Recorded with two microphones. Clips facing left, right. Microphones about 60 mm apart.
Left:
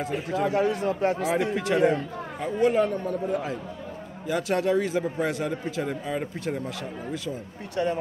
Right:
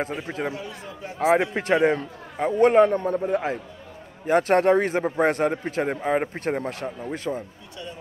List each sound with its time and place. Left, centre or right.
0.0 s speech: right
0.5 s a man's voice: left
1.2 s a man's voice: right
1.5 s a man's voice: right
7.7 s a man's voice: left